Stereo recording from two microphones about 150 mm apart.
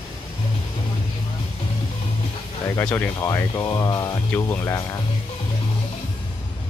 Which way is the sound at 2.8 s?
10° left (ahead or behind).